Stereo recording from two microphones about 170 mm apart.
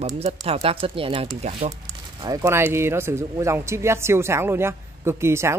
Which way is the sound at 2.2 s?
15° right (ahead or behind).